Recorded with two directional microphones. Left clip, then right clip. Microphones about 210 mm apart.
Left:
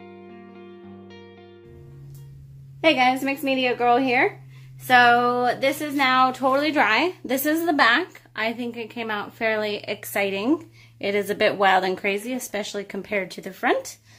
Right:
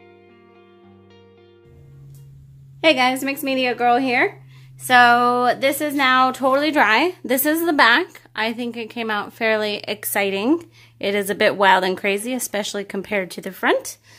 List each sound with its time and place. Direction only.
2.8 s a woman's voice: 40° right (ahead or behind)